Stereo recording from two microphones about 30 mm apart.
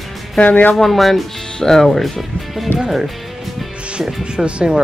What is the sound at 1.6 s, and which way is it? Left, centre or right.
Speech, centre.